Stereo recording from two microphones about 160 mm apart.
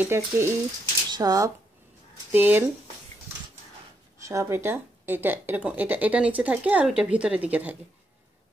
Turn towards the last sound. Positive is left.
turn(degrees=-10)  # may be behind; listen again after turning